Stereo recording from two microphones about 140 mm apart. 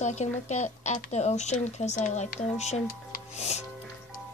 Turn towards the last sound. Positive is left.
turn(degrees=50)  # may be behind; listen again after turning